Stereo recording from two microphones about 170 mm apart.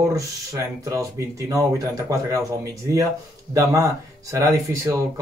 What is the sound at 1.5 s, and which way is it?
Speech, 20° right (ahead or behind).